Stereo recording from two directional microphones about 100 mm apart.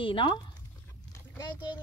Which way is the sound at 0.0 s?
55° left (ahead or behind).